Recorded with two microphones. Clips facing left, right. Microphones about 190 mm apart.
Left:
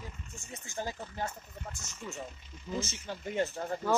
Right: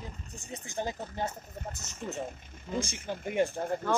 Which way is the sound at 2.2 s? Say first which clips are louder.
Right 4 dB; 55° right (ahead or behind).